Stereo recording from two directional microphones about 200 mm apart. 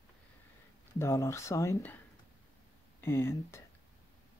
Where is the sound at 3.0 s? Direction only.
15° left (ahead or behind).